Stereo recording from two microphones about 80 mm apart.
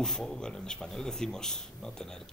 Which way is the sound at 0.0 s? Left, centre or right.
Centre.